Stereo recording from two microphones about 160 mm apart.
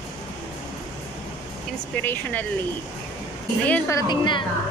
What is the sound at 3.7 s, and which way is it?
Speech, 20° left (ahead or behind).